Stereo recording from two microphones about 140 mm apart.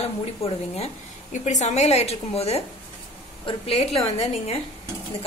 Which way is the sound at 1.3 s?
60° left (ahead or behind).